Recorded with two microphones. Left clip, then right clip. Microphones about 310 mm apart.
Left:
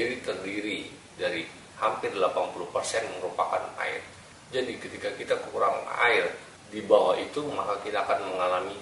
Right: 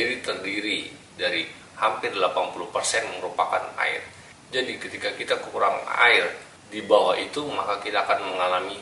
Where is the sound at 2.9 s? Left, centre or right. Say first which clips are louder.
Right 4 dB; centre.